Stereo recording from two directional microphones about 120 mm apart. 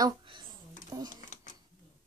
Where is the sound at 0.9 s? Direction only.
30° right (ahead or behind).